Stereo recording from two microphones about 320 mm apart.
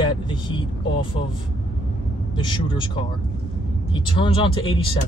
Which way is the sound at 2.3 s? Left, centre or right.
Centre.